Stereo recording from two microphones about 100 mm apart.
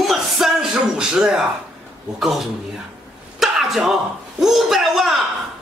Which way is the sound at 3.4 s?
5° right (ahead or behind).